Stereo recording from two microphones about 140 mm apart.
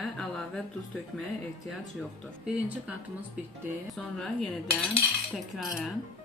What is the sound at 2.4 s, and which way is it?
Speech, 10° right (ahead or behind).